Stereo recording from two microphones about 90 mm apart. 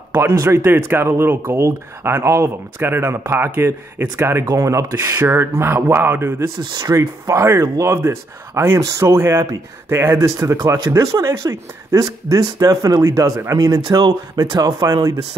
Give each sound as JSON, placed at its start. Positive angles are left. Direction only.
{"t": 0.1, "sound": "speech", "side_deg": -30}
{"t": 0.7, "sound": "speech", "side_deg": -25}
{"t": 4.5, "sound": "speech", "side_deg": -35}
{"t": 6.7, "sound": "speech", "side_deg": -45}